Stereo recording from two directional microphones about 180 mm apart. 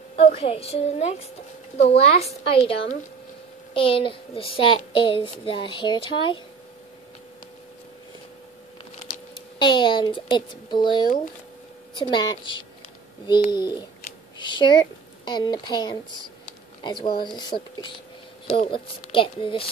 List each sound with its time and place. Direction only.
0.1 s a woman's voice: 35° left (ahead or behind)
9.6 s a child's voice: 25° left (ahead or behind)